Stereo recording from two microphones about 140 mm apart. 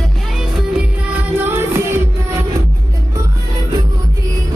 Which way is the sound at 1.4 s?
15° right (ahead or behind).